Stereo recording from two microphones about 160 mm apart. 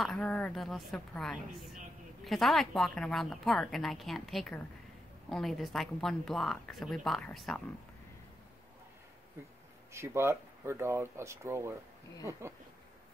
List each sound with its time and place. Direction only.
0.0 s a woman's voice: 5° left (ahead or behind)
9.9 s speech: 15° right (ahead or behind)